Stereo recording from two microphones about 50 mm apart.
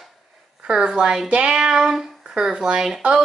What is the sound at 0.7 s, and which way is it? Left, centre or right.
Speech, centre.